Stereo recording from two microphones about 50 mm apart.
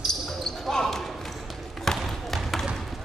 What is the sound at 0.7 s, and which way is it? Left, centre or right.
Basketball bounce, centre.